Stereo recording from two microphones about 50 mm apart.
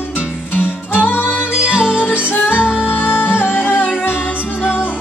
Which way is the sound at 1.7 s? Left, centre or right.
Centre.